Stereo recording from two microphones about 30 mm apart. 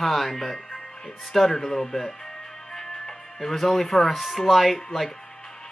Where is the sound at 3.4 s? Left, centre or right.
Centre.